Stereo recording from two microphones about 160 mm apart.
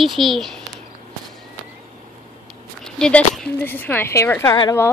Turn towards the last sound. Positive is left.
turn(degrees=20)  # may be behind; listen again after turning